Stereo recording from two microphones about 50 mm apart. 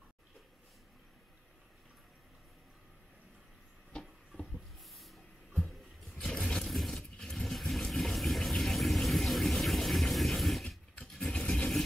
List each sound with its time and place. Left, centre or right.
4.9 s printer: centre
6.1 s vehicle: centre
11.1 s toilet flush: centre